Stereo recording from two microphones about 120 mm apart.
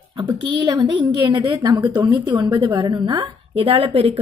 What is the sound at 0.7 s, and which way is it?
A woman's voice, 35° right (ahead or behind).